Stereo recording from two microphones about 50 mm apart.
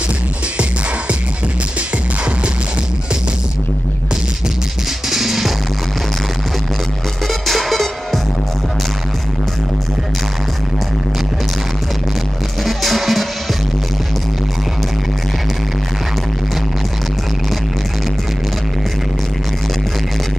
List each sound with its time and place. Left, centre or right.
5.1 s music: centre
7.2 s music: centre
12.6 s music: centre